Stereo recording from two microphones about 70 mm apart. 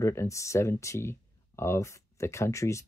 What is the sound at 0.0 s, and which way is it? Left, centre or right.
Speech, left.